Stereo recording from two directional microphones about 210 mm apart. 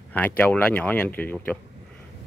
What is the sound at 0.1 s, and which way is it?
A man's voice, 10° left (ahead or behind).